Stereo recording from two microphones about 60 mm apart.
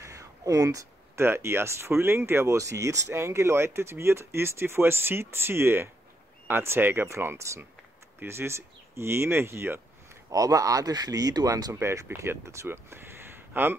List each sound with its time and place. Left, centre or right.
0.0 s a sound: right
1.1 s speech: right
8.2 s speech: right
10.3 s speech: right
11.7 s speech: right